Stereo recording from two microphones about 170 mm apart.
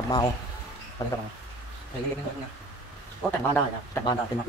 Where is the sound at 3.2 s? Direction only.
Centre (ahead or behind).